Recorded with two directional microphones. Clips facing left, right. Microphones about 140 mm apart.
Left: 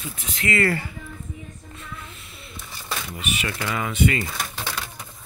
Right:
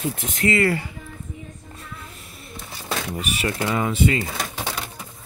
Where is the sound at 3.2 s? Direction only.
35° right (ahead or behind).